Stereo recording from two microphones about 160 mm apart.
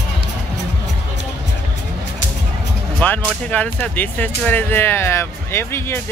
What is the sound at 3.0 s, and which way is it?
Speech, 10° left (ahead or behind).